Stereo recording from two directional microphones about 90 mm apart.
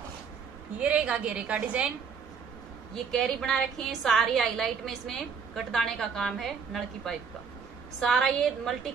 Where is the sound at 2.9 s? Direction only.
5° left (ahead or behind).